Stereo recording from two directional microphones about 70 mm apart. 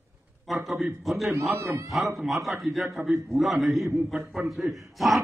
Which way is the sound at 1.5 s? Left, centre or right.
Right.